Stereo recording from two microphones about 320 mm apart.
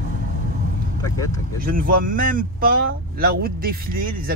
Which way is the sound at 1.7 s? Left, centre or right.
Right.